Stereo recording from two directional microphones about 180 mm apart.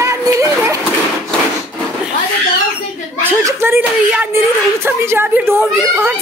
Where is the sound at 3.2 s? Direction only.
15° right (ahead or behind).